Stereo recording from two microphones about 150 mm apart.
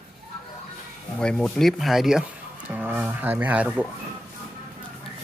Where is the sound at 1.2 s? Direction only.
5° left (ahead or behind).